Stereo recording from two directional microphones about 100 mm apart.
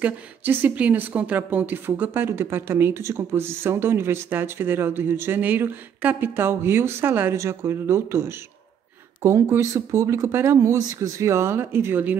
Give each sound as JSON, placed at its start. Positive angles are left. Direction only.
{"t": 0.0, "sound": "speech", "side_deg": -20}